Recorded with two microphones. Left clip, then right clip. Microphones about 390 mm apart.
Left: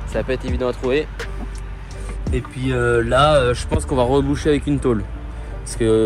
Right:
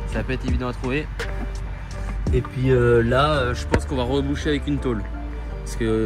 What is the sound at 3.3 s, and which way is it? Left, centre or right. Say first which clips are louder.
Speech: left 7 dB; left.